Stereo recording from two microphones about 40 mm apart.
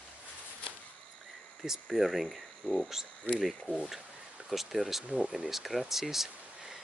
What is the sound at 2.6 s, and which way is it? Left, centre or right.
Speech, left.